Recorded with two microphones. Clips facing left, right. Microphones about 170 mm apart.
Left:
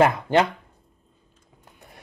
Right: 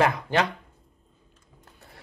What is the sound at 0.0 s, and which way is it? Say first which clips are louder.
Speech: left 5 dB; 25° left (ahead or behind).